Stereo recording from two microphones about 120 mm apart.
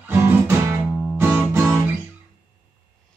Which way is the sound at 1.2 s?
15° right (ahead or behind).